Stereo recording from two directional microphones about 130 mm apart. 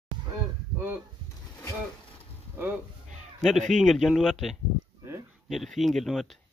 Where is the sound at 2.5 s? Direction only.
15° right (ahead or behind).